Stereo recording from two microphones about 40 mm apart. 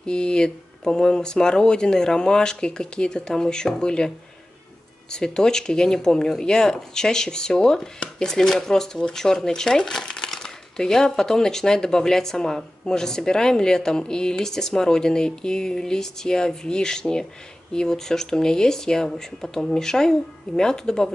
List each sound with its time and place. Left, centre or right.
0.0 s speech: left
5.1 s speech: centre